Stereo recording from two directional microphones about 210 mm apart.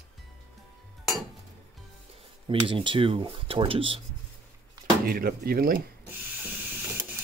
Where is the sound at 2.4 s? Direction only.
25° right (ahead or behind).